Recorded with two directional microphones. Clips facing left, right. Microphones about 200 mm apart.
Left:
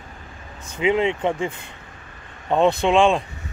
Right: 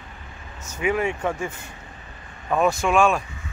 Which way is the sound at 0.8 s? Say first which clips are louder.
Left 4 dB; 20° left (ahead or behind).